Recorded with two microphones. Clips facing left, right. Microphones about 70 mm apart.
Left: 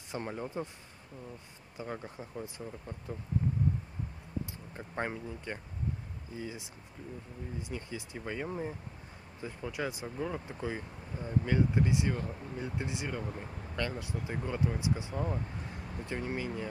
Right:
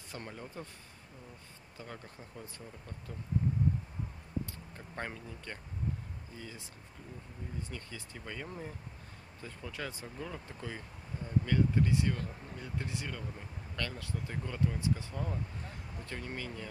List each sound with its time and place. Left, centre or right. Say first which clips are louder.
0.1 s speech: left 7 dB; left
1.8 s speech: left 7 dB; centre
4.7 s speech: left 6 dB; centre
7.6 s speech: left 5 dB; centre